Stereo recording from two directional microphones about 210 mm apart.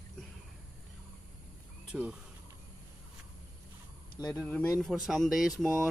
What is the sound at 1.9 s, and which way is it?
Speech, 5° right (ahead or behind).